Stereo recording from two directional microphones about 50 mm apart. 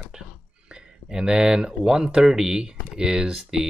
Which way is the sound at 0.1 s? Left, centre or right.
Centre.